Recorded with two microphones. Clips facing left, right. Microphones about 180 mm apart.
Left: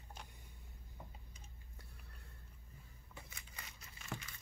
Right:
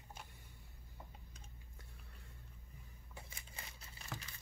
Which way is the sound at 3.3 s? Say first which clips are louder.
Right 1 dB; 25° right (ahead or behind).